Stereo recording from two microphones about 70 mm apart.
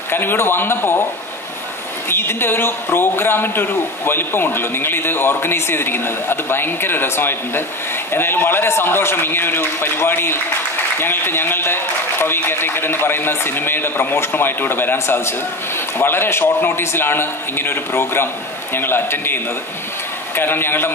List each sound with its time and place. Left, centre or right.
0.1 s a man's voice: left
2.0 s a man's voice: left